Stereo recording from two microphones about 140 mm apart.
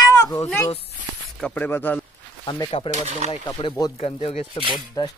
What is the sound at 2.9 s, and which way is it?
Speech, 55° right (ahead or behind).